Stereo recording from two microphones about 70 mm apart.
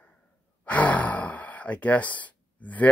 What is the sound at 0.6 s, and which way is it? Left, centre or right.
Speech, centre.